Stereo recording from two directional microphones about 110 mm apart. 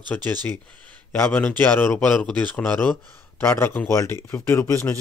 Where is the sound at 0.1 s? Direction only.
15° left (ahead or behind).